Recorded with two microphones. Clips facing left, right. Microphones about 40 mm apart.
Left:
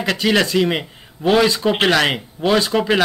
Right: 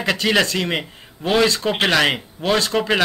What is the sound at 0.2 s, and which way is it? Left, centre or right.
Speech, centre.